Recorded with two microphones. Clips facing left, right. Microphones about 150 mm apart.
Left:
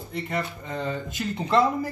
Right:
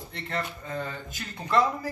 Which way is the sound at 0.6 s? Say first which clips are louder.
Left 4 dB; 20° left (ahead or behind).